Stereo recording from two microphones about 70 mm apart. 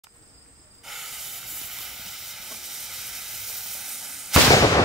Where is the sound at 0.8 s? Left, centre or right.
Centre.